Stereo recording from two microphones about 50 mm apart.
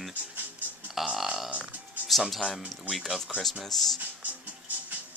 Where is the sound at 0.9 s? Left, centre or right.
Centre.